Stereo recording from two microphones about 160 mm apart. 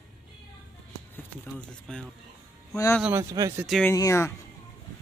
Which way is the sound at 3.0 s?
15° right (ahead or behind).